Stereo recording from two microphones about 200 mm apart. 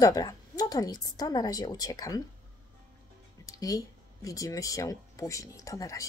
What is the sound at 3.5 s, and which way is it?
Speech, 15° left (ahead or behind).